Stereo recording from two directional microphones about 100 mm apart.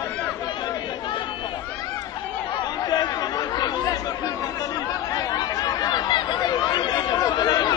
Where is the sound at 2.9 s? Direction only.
45° left (ahead or behind).